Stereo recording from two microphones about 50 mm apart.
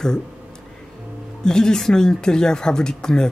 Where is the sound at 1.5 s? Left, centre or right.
Centre.